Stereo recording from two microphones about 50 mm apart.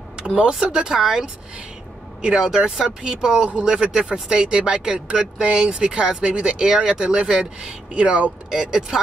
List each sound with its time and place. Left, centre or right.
0.4 s speech: centre